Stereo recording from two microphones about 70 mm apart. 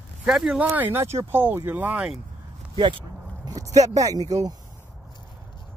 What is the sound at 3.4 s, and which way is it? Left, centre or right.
Speech, right.